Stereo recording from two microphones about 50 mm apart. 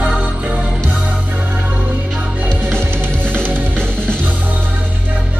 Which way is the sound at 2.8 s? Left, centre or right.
Right.